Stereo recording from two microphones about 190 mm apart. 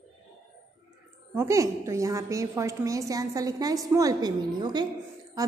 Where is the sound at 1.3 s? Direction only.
15° right (ahead or behind).